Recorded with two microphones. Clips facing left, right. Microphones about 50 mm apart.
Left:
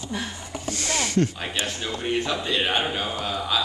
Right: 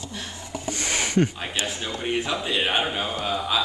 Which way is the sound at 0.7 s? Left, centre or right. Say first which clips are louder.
Even; centre.